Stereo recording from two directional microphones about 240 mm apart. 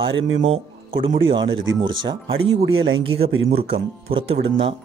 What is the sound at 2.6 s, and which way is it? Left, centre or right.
Speech, right.